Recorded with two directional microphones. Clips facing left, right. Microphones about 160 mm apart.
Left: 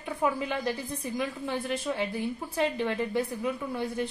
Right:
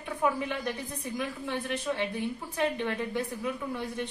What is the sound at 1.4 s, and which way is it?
Speech, 35° left (ahead or behind).